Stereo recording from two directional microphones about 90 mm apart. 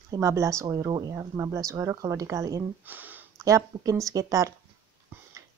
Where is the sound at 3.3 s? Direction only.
40° right (ahead or behind).